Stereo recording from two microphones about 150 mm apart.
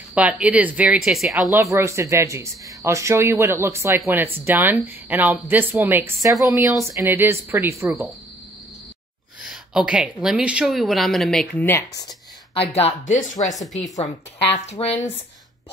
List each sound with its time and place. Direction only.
0.1 s a woman's voice: 10° right (ahead or behind)
1.5 s a woman's voice: 20° right (ahead or behind)
9.4 s a woman's voice: 5° right (ahead or behind)
11.6 s speech: 20° left (ahead or behind)
12.7 s speech: 50° left (ahead or behind)
14.7 s speech: 45° left (ahead or behind)